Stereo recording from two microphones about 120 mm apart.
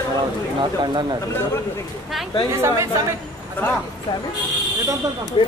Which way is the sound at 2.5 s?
25° right (ahead or behind).